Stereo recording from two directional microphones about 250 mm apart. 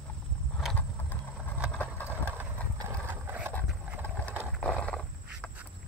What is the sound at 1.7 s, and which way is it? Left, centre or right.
Vehicle, centre.